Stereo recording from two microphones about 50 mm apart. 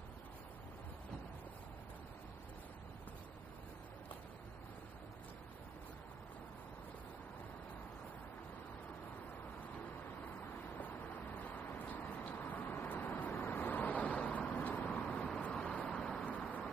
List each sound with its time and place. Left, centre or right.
10.8 s vehicle: left
15.0 s vehicle: centre